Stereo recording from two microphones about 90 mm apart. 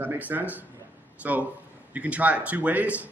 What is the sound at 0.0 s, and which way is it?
A man's voice, 20° right (ahead or behind).